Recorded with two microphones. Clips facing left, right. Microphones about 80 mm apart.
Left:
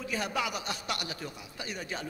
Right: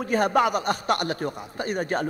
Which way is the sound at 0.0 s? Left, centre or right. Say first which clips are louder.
Right 12 dB; right.